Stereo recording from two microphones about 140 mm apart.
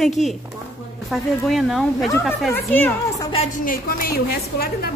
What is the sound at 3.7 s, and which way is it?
A woman's voice, 85° left.